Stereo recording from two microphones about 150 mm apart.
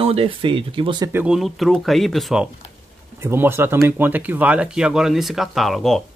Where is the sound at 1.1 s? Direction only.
5° right (ahead or behind).